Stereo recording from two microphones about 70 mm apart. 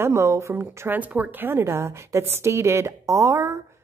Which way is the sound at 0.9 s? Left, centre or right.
Centre.